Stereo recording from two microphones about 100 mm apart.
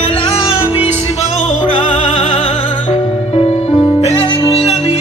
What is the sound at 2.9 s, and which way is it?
Music, 90° left.